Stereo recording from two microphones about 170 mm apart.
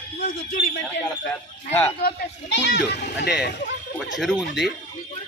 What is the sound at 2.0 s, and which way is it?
Speech, 80° left.